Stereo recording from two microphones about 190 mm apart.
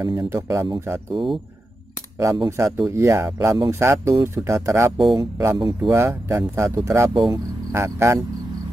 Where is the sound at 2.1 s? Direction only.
20° right (ahead or behind).